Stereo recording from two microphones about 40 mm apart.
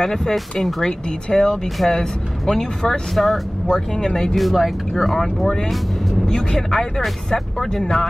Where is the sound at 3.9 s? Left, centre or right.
Centre.